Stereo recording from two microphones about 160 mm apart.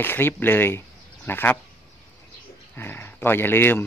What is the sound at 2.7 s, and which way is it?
Speech, 15° left (ahead or behind).